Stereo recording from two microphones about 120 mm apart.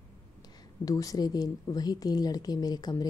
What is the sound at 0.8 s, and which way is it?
Speech, 30° left (ahead or behind).